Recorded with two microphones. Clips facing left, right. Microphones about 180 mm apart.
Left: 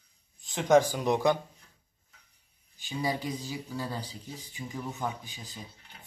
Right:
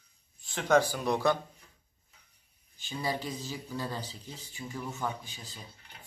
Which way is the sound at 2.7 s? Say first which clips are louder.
Left 2 dB; 15° left (ahead or behind).